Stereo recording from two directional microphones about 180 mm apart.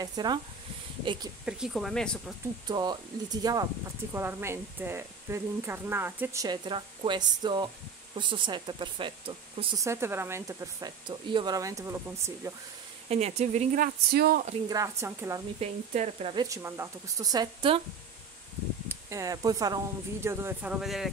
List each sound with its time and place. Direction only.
0.0 s speech: 20° right (ahead or behind)
1.4 s speech: centre (ahead or behind)
2.7 s a woman's voice: 25° right (ahead or behind)
9.8 s a woman's voice: 15° right (ahead or behind)
13.1 s speech: 35° right (ahead or behind)
14.1 s speech: 60° right (ahead or behind)
14.7 s a woman's voice: 15° right (ahead or behind)
15.6 s speech: 35° right (ahead or behind)
16.4 s speech: 15° right (ahead or behind)
18.9 s a woman's voice: 15° right (ahead or behind); by 21.1 s centre (ahead or behind)